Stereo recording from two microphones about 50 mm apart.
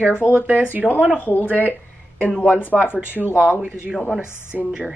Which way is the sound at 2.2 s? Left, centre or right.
Left.